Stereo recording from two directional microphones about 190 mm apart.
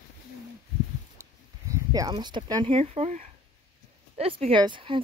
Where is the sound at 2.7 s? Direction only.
35° right (ahead or behind).